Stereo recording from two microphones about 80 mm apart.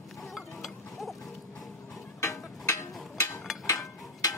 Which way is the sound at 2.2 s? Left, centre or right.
Left.